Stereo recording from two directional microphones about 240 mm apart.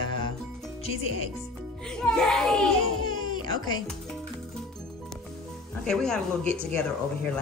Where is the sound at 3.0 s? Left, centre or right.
Centre.